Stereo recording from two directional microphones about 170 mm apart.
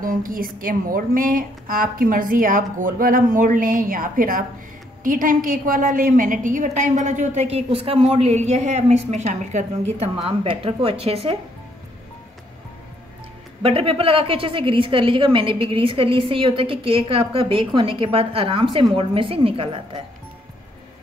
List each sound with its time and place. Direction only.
0.0 s a woman's voice: 55° right (ahead or behind)
10.2 s a woman's voice: 35° right (ahead or behind)
13.6 s a woman's voice: 35° right (ahead or behind)